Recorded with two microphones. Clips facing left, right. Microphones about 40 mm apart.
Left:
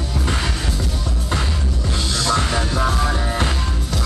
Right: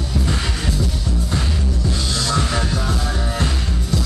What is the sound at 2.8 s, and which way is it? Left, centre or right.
Music, left.